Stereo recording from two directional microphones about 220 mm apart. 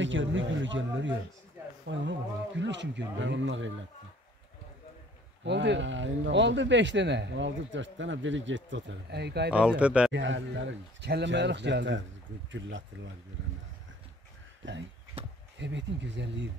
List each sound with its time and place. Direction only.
0.0 s speech: 60° right (ahead or behind)
5.4 s speech: 55° right (ahead or behind)
9.5 s speech: 5° right (ahead or behind)
10.1 s speech: 55° right (ahead or behind)
14.6 s speech: 55° right (ahead or behind)